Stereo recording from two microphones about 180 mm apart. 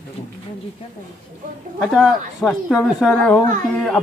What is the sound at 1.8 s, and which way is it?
A woman's voice, centre (ahead or behind).